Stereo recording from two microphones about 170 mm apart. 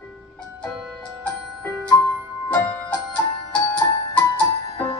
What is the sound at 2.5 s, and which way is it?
Music, 10° left (ahead or behind).